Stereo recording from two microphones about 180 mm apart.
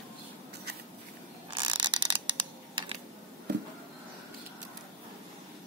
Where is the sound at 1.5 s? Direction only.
25° right (ahead or behind).